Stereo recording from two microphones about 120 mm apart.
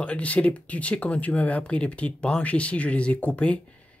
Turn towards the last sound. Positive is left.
turn(degrees=10)  # may be behind; listen again after turning